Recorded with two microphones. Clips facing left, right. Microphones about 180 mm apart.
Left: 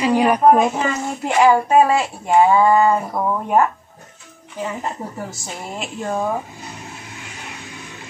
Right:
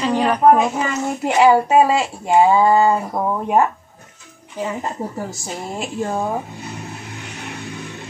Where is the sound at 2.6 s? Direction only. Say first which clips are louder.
Even; 30° right (ahead or behind).